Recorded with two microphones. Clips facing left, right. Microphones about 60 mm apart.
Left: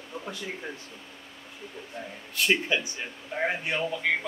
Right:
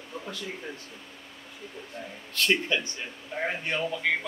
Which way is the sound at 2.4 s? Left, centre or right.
Centre.